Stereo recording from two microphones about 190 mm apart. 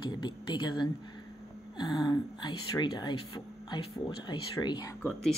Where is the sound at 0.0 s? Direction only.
25° left (ahead or behind).